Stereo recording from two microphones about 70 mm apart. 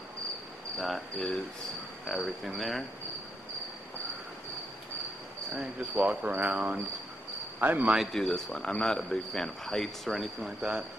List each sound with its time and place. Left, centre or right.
0.7 s speech: centre
5.5 s speech: centre
8.1 s speech: centre
10.6 s speech: centre